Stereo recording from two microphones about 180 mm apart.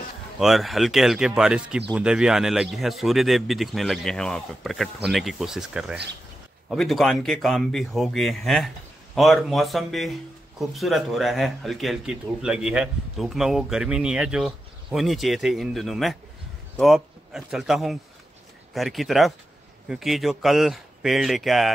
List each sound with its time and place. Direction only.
0.4 s a man's voice: centre (ahead or behind)